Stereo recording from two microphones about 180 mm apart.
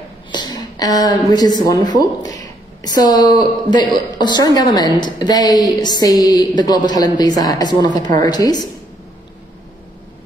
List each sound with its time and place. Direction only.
0.3 s a woman's voice: 20° left (ahead or behind)